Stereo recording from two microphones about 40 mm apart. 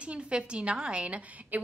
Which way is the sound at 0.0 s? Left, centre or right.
Right.